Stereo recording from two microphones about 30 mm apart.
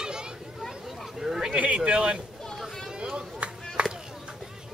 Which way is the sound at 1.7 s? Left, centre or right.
Right.